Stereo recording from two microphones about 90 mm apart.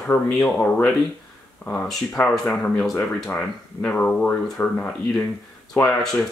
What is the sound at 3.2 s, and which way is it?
Speech, 20° left (ahead or behind).